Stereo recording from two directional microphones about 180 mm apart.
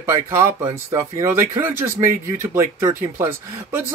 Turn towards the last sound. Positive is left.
turn(degrees=-15)  # may be behind; listen again after turning